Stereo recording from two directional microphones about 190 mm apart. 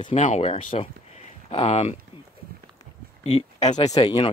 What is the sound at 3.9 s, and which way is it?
Speech, 25° left (ahead or behind).